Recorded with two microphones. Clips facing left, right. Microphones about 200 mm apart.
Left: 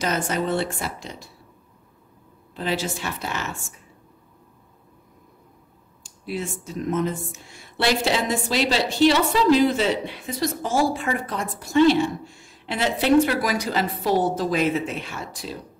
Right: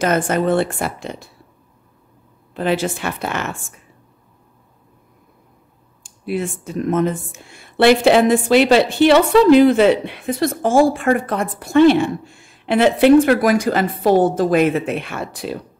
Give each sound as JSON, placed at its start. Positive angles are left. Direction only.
{"t": 0.0, "sound": "speech", "side_deg": -55}
{"t": 2.5, "sound": "speech", "side_deg": -55}
{"t": 6.0, "sound": "speech", "side_deg": -55}